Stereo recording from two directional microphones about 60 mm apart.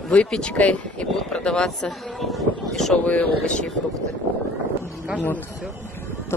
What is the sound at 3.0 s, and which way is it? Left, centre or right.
Speech, centre.